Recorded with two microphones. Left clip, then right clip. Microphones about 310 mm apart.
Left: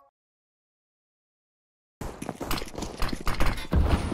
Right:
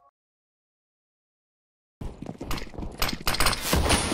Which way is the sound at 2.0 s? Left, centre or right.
Left.